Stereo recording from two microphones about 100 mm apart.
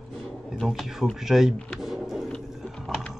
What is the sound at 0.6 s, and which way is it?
Speech, centre (ahead or behind).